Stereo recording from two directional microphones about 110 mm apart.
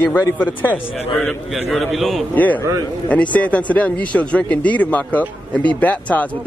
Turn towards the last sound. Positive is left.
turn(degrees=15)  # may be behind; listen again after turning